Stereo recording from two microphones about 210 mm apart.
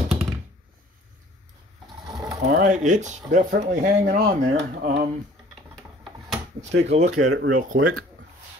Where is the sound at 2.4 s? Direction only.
40° right (ahead or behind).